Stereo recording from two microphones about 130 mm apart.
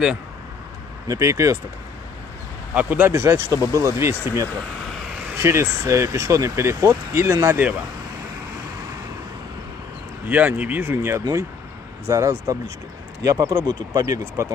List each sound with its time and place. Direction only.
1.0 s speech: 25° right (ahead or behind)
2.7 s speech: 15° right (ahead or behind)
10.2 s speech: 10° right (ahead or behind)